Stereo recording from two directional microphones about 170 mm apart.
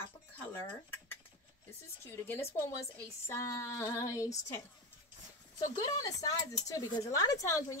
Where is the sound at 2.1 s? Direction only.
15° left (ahead or behind).